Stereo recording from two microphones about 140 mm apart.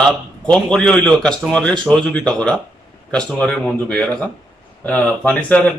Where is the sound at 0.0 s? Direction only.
5° left (ahead or behind).